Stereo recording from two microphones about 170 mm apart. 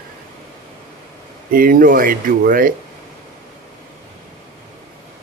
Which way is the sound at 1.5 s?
55° right (ahead or behind).